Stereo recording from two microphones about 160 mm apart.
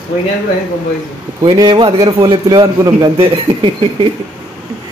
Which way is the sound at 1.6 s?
30° right (ahead or behind).